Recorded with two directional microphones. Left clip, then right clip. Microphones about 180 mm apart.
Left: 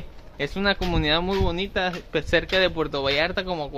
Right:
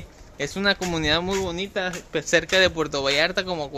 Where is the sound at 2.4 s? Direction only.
5° right (ahead or behind).